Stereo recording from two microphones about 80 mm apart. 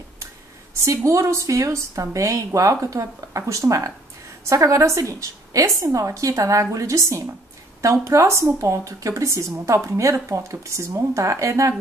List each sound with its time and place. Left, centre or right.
0.7 s a woman's voice: right